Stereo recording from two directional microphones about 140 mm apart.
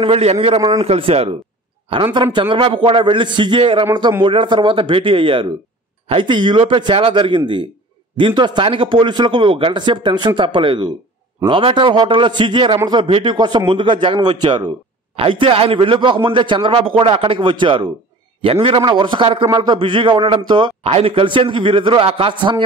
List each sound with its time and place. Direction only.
0.0 s a man's voice: 45° right (ahead or behind)